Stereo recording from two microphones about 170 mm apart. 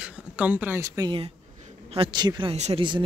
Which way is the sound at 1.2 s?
35° right (ahead or behind).